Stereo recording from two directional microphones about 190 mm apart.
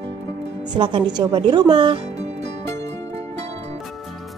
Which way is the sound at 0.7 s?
25° right (ahead or behind).